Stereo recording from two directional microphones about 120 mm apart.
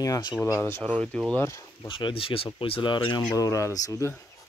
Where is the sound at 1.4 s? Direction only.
20° left (ahead or behind).